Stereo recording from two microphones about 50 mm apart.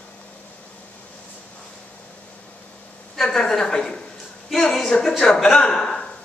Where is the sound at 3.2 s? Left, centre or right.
Centre.